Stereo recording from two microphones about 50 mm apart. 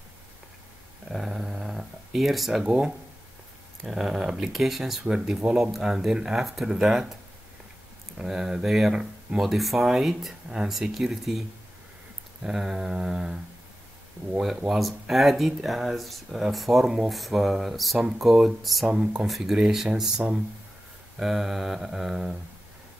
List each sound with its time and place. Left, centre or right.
1.0 s dog: centre
2.6 s speech: right
3.8 s speech: centre
5.0 s mantra: centre
8.2 s mantra: centre
9.4 s speech: centre
12.4 s mantra: centre
14.7 s speech: centre
18.9 s speech: centre
19.2 s mantra: centre